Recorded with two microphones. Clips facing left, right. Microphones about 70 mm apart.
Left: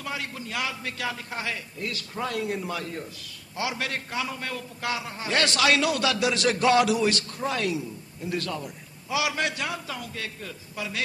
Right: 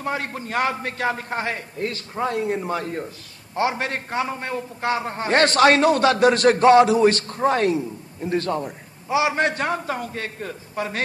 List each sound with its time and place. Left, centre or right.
0.0 s a man's voice: right